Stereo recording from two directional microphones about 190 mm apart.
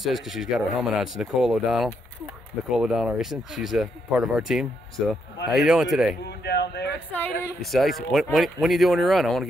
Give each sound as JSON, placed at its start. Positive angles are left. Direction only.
{"t": 0.0, "sound": "speech", "side_deg": 0}
{"t": 6.4, "sound": "speech", "side_deg": 60}
{"t": 7.1, "sound": "speech", "side_deg": 10}